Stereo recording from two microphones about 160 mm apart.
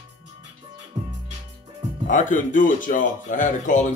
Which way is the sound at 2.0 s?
55° left (ahead or behind).